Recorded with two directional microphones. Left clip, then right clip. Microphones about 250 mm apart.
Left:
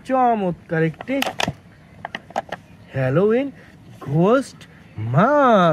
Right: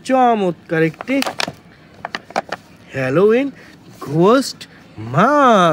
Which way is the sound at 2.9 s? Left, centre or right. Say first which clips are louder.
Right 5 dB; centre.